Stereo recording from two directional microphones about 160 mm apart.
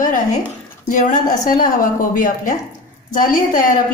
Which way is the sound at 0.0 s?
55° left (ahead or behind).